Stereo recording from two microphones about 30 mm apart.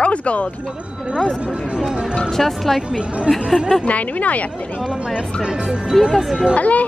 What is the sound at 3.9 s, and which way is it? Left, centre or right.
Speech, left.